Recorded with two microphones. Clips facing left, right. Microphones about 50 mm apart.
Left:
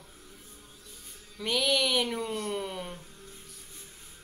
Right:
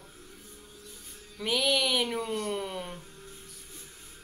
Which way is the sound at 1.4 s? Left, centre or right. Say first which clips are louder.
Even; centre.